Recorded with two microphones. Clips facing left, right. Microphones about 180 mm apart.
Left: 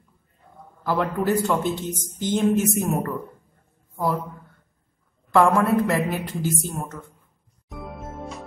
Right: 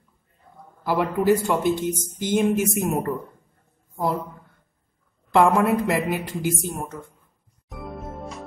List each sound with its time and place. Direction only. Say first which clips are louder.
0.8 s a woman's voice: right 3 dB; 10° right (ahead or behind)
5.3 s a woman's voice: even; 20° right (ahead or behind)
7.6 s music: right 1 dB; centre (ahead or behind)